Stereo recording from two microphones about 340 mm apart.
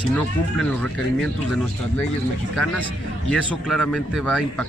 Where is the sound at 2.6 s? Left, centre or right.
Centre.